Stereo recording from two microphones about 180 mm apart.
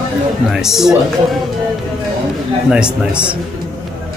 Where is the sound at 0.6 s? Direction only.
Centre (ahead or behind).